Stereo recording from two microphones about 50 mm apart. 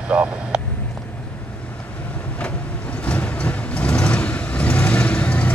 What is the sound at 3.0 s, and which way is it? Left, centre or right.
Vehicle, left.